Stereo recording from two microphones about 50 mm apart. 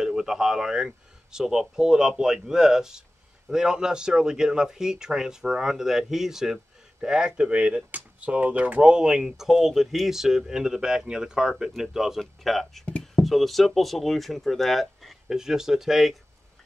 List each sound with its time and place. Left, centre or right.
0.0 s speech: centre
12.2 s speech: centre
12.8 s a sound: left
13.2 s speech: centre